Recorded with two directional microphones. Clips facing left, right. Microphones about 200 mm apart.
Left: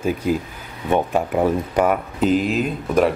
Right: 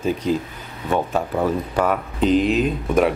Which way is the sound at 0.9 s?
15° left (ahead or behind).